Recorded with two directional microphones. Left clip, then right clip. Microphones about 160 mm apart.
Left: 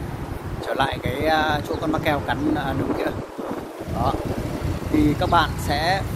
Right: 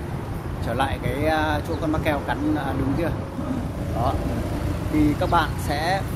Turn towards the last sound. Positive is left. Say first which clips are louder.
# left 2 dB
turn(degrees=25)  # may be behind; listen again after turning